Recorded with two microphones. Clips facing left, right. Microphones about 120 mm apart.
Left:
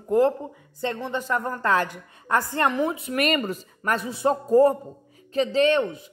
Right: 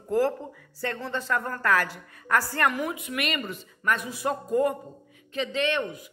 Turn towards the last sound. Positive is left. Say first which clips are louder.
# left 7 dB
turn(degrees=30)  # may be behind; listen again after turning